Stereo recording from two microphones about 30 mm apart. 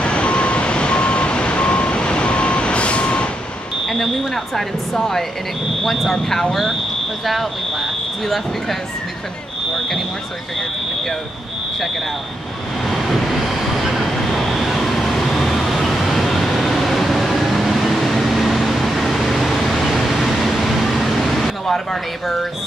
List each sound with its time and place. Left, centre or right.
0.0 s vehicle: left
3.8 s smoke detector: centre
5.9 s speech: centre
12.9 s vehicle: centre
14.1 s vehicle: centre
20.9 s air conditioning: centre